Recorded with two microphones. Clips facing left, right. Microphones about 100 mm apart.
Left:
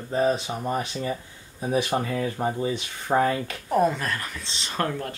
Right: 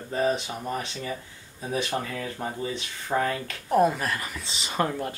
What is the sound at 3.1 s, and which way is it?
Speech, 40° left (ahead or behind).